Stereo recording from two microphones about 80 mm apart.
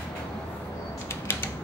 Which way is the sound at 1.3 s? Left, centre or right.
Left.